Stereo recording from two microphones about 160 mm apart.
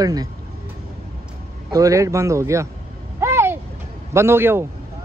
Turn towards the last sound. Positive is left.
turn(degrees=-15)  # may be behind; listen again after turning